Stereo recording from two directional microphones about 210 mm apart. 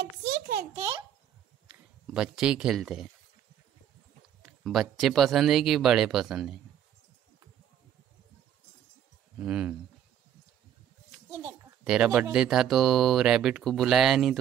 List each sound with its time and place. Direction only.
0.0 s a sound: 50° right (ahead or behind)
0.7 s a child's voice: 25° right (ahead or behind)
1.7 s speech: 5° right (ahead or behind)
4.4 s a child's voice: centre (ahead or behind)
9.4 s a child's voice: 5° right (ahead or behind)
11.2 s a child's voice: 10° right (ahead or behind)